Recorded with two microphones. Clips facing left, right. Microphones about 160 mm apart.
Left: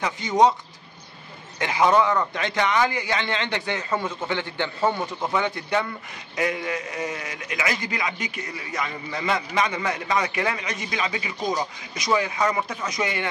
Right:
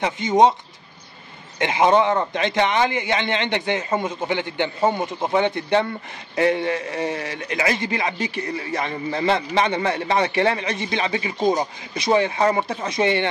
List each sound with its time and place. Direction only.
0.0 s a man's voice: 25° right (ahead or behind)
1.6 s a man's voice: 20° right (ahead or behind)